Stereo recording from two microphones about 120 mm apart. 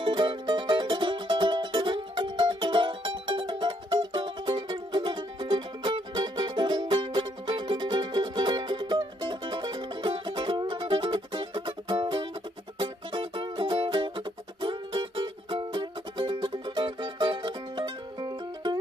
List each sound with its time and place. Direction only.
0.0 s music: 40° right (ahead or behind)